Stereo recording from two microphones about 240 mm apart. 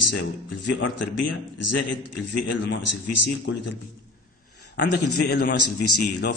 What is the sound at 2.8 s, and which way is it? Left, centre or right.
Speech, left.